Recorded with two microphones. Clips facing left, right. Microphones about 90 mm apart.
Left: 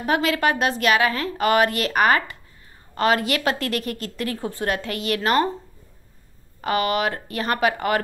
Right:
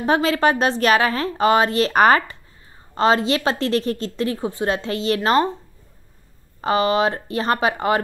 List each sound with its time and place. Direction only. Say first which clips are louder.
0.0 s a woman's voice: right 3 dB; 30° right (ahead or behind)
6.6 s a woman's voice: right 4 dB; 25° right (ahead or behind)